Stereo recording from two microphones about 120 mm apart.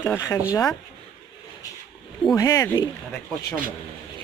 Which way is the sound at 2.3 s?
30° left (ahead or behind).